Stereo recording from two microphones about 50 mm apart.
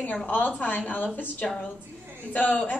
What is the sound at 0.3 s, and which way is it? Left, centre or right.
Speech, left.